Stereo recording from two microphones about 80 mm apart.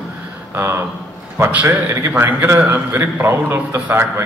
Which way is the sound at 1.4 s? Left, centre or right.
Right.